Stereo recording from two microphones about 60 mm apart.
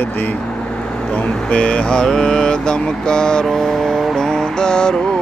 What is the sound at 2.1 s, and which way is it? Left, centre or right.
Mantra, centre.